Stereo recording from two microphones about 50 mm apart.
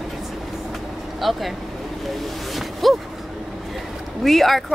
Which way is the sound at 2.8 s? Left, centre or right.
Centre.